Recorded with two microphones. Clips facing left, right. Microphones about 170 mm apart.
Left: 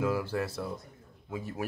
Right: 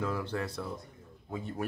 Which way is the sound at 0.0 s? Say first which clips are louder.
Left 4 dB; 5° left (ahead or behind).